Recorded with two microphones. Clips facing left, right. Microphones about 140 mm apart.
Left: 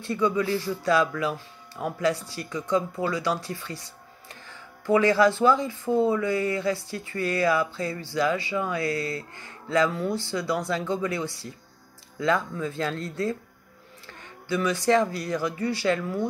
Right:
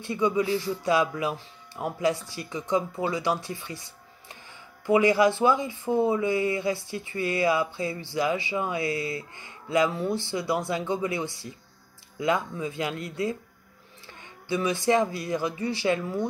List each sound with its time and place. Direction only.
0.0 s speech: 20° right (ahead or behind)